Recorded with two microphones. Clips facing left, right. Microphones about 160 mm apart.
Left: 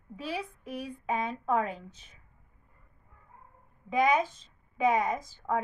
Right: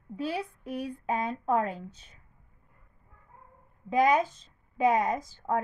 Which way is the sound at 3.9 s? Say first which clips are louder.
Right 2 dB; 30° right (ahead or behind).